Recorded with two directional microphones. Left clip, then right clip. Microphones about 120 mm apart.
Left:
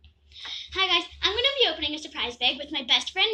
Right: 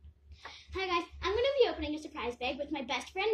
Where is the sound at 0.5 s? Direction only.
25° right (ahead or behind).